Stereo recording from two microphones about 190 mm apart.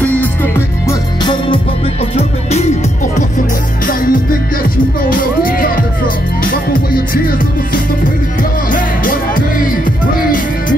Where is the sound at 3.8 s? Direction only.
45° left (ahead or behind).